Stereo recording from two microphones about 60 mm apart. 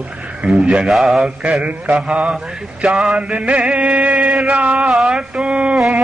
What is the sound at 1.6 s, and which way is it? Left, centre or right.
Chant, right.